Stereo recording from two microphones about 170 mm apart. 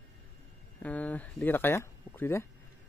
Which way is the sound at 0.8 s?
10° left (ahead or behind).